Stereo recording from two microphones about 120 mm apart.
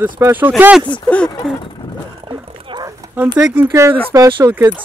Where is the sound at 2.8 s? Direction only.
30° right (ahead or behind).